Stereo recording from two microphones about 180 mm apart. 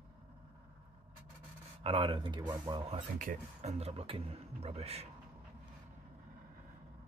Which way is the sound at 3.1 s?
45° right (ahead or behind).